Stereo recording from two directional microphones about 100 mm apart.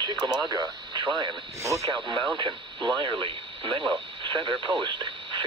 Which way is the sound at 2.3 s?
50° right (ahead or behind).